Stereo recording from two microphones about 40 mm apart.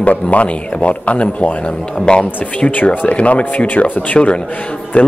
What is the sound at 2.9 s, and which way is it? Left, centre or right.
Speech, left.